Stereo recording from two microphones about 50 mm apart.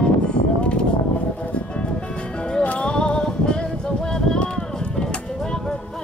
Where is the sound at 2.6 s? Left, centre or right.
Left.